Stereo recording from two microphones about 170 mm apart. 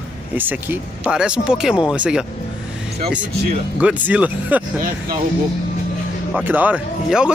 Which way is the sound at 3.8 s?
10° right (ahead or behind).